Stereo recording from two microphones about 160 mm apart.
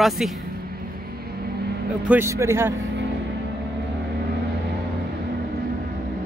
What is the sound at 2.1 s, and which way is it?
Speech, 15° right (ahead or behind).